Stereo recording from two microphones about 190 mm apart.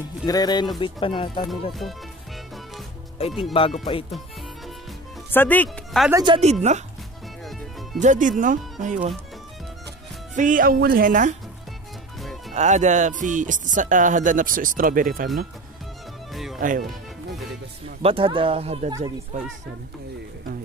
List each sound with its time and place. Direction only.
0.3 s speech: 20° left (ahead or behind)
1.7 s speech: centre (ahead or behind)
3.2 s speech: 30° left (ahead or behind)
5.3 s speech: 10° left (ahead or behind)
6.2 s speech: 30° right (ahead or behind)
8.0 s speech: 40° right (ahead or behind)
10.3 s speech: 45° right (ahead or behind)
12.2 s music: centre (ahead or behind)
12.5 s speech: 40° right (ahead or behind)
16.5 s speech: 45° right (ahead or behind)
18.0 s speech: 30° right (ahead or behind)